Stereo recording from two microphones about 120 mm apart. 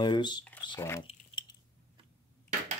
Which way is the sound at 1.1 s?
55° left (ahead or behind).